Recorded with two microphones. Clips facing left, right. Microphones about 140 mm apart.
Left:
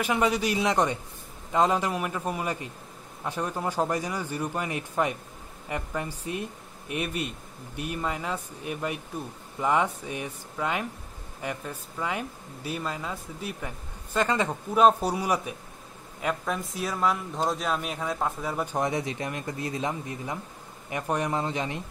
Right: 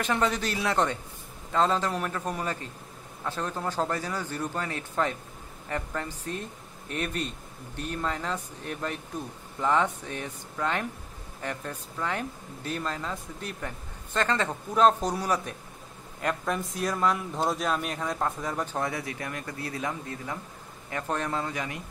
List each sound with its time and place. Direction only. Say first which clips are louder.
0.0 s speech: left 2 dB; 10° left (ahead or behind)